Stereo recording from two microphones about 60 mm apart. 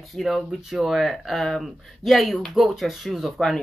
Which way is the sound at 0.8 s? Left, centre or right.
Centre.